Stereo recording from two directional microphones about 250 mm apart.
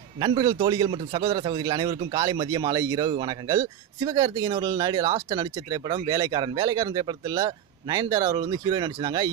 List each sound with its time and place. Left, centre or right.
0.2 s a man's voice: centre